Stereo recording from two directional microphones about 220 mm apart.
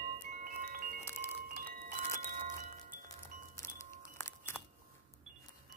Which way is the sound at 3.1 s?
15° left (ahead or behind).